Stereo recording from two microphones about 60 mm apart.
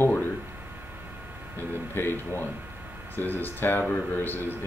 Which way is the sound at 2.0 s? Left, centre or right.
Left.